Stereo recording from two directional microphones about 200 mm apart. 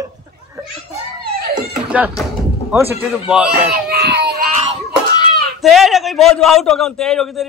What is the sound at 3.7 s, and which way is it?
Baby cry, 50° right (ahead or behind).